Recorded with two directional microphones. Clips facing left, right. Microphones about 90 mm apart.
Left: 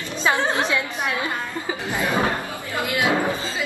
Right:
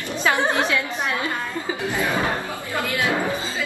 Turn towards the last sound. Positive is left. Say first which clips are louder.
# left 1 dB
turn(degrees=20)  # may be behind; listen again after turning